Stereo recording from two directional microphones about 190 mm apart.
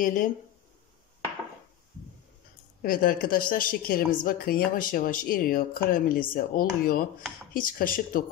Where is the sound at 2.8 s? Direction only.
45° left (ahead or behind).